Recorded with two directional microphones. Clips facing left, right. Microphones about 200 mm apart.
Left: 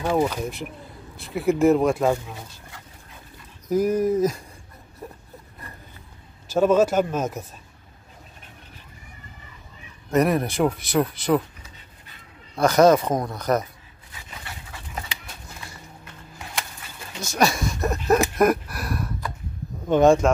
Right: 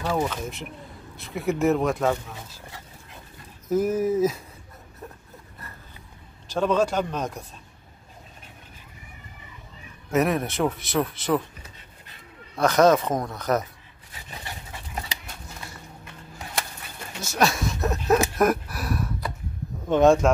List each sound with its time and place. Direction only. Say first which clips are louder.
0.0 s speech: left 4 dB; 20° left (ahead or behind)
0.3 s speech: left 3 dB; centre (ahead or behind)
2.0 s speech: left 2 dB; 15° left (ahead or behind)
3.6 s speech: left 2 dB; 5° right (ahead or behind)
6.5 s speech: left 4 dB; 5° left (ahead or behind)
10.1 s speech: left 2 dB; centre (ahead or behind)
12.5 s speech: left 2 dB; centre (ahead or behind)
17.2 s speech: left 1 dB; 5° right (ahead or behind)